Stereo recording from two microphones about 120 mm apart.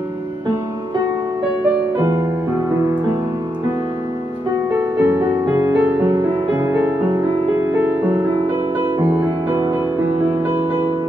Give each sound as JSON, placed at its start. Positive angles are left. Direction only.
{"t": 2.0, "sound": "music", "side_deg": -25}
{"t": 4.7, "sound": "music", "side_deg": -20}